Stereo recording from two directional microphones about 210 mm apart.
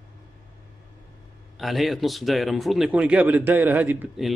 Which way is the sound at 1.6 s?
Centre (ahead or behind).